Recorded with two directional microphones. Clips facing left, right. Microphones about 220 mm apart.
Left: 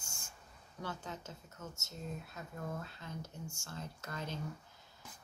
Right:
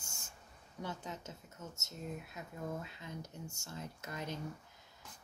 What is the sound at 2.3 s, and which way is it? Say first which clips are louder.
A woman's voice: right 1 dB; 15° right (ahead or behind).